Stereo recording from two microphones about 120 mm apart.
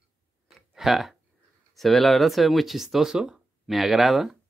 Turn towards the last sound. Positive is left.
turn(degrees=0)  # may be behind; listen again after turning